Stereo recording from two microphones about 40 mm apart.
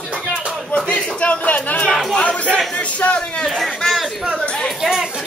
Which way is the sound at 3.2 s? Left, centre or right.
Centre.